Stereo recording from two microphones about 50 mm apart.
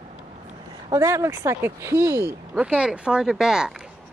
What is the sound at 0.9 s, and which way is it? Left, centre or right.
Speech, right.